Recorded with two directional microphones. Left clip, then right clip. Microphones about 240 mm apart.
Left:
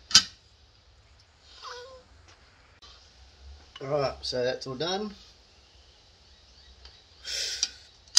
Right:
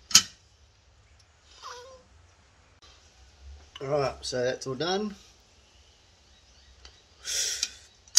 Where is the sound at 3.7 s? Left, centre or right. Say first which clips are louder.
Right 1 dB; centre; by 5.1 s right.